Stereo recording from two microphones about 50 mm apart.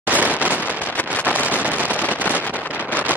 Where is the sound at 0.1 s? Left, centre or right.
Right.